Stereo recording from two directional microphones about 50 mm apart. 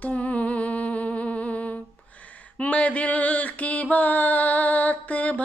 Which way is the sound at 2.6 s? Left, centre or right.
Left.